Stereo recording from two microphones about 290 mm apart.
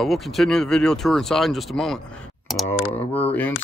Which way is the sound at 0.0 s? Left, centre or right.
Centre.